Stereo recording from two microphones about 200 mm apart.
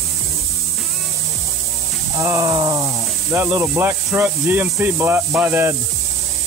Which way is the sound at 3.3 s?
5° right (ahead or behind).